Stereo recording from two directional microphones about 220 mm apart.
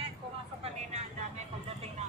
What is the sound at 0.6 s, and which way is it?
Vehicle, 30° right (ahead or behind).